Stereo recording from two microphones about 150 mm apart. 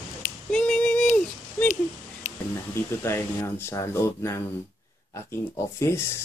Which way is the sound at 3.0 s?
15° left (ahead or behind).